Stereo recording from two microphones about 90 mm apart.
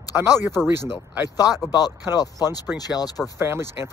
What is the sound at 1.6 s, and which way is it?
Speech, 45° left (ahead or behind).